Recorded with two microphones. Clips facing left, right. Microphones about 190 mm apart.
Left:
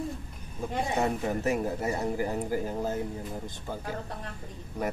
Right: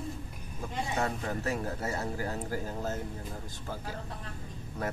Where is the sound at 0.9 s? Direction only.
20° left (ahead or behind).